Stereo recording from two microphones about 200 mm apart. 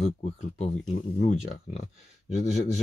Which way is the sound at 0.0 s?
30° left (ahead or behind).